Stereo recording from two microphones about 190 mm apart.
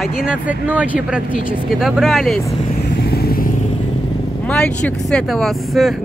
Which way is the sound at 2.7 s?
50° left (ahead or behind).